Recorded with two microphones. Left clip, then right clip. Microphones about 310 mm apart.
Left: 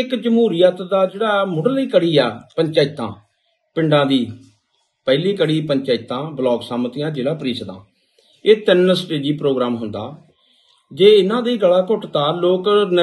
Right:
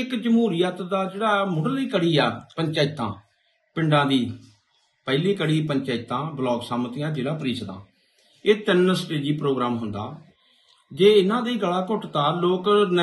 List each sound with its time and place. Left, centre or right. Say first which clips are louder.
0.1 s a man's voice: left 5 dB; centre